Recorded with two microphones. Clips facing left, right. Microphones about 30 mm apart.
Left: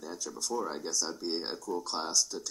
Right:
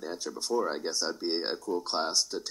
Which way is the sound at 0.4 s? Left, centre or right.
Right.